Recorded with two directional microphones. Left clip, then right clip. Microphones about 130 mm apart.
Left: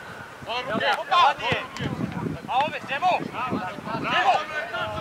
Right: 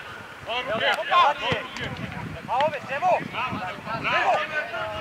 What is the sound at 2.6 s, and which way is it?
Speech, 35° left (ahead or behind).